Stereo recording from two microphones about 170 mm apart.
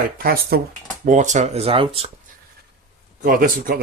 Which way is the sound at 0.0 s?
60° right (ahead or behind).